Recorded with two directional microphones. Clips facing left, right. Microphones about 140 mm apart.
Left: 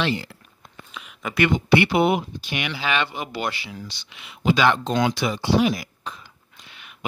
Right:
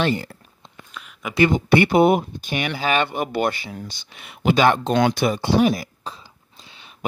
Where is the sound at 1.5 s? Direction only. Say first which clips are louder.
Even; 45° right (ahead or behind).